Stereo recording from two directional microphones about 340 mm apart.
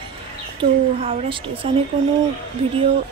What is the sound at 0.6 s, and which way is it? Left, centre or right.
Speech, centre.